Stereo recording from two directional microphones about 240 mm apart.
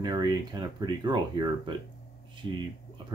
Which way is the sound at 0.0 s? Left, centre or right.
Centre.